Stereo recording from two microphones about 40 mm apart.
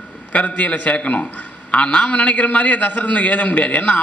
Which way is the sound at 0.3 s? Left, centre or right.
Left.